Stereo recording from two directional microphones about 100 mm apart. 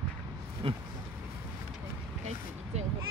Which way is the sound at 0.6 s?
65° right (ahead or behind).